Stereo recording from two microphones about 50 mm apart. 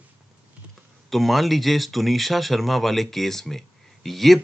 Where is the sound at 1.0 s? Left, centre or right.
Centre.